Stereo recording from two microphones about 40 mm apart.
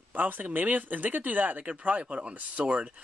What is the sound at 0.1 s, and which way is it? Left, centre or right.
Speech, right.